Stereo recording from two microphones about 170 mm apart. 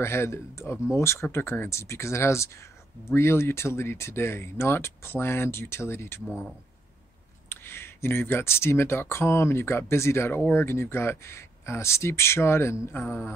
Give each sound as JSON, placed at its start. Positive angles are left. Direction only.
{"t": 0.0, "sound": "speech", "side_deg": 15}
{"t": 6.2, "sound": "speech", "side_deg": -5}
{"t": 7.4, "sound": "speech", "side_deg": 15}